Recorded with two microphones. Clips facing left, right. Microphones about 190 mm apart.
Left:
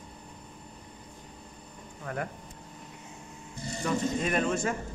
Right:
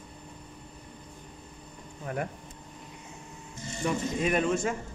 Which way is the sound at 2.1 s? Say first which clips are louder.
Right 2 dB; 20° right (ahead or behind).